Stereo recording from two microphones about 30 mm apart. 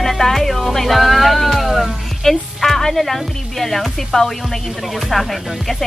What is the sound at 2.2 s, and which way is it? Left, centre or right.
Speech, centre.